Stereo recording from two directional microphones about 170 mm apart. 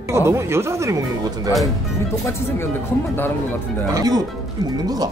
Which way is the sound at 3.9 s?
20° right (ahead or behind).